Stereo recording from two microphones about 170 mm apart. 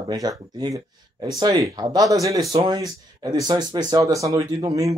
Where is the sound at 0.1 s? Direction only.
25° right (ahead or behind).